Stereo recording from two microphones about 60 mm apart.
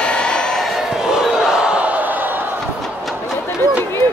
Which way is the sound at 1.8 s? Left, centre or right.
Right.